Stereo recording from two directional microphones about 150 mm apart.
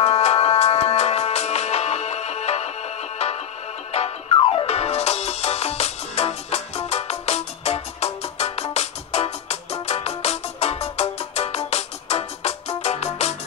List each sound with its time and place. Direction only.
0.0 s music: 45° left (ahead or behind)
3.9 s music: 40° left (ahead or behind)